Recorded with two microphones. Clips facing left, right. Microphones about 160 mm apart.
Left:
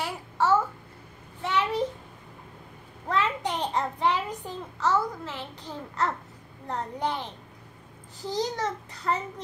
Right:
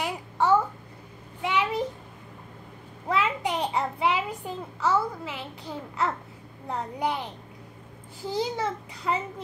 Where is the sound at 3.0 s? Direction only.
10° right (ahead or behind).